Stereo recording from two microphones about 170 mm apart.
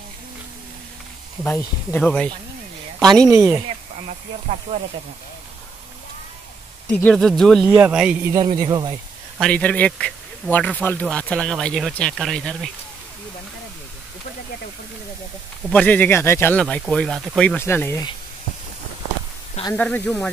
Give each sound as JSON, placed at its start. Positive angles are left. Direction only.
{"t": 1.4, "sound": "a woman's voice", "side_deg": 15}
{"t": 3.3, "sound": "speech", "side_deg": -15}
{"t": 4.5, "sound": "speech", "side_deg": -45}
{"t": 7.0, "sound": "speech", "side_deg": 5}
{"t": 7.6, "sound": "speech", "side_deg": -10}
{"t": 8.5, "sound": "speech", "side_deg": -25}
{"t": 9.4, "sound": "speech", "side_deg": 10}
{"t": 15.7, "sound": "speech", "side_deg": 10}
{"t": 17.6, "sound": "speech", "side_deg": 15}
{"t": 19.7, "sound": "speech", "side_deg": 10}